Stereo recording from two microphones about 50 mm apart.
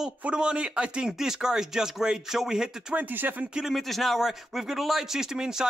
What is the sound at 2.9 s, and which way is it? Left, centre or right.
Speech, right.